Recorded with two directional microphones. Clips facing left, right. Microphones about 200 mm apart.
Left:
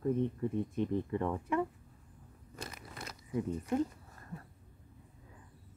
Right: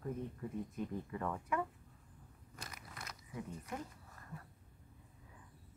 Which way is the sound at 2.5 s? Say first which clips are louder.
Left 7 dB; 25° left (ahead or behind).